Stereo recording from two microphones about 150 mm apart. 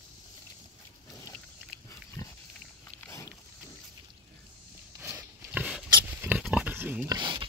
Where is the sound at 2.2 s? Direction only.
20° left (ahead or behind).